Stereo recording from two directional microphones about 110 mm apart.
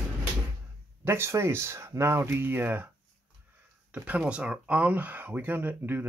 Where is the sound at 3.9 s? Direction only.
15° right (ahead or behind).